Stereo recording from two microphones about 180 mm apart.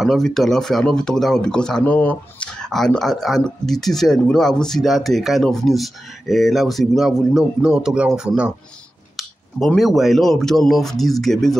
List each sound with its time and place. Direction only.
0.0 s speech: centre (ahead or behind)